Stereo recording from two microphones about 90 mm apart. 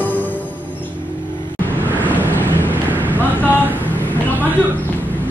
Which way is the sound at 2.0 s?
20° right (ahead or behind).